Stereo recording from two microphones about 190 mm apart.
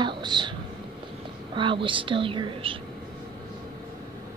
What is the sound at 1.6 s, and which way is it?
Speech, 25° right (ahead or behind).